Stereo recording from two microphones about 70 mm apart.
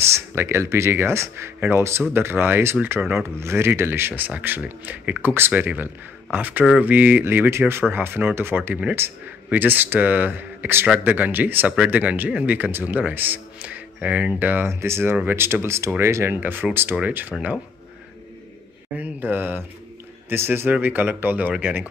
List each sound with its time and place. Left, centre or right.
0.1 s a man's voice: right
14.7 s a man's voice: right; by 17.6 s centre
18.9 s a man's voice: right